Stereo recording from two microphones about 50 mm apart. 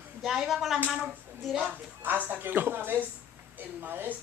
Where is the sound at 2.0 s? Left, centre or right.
Right.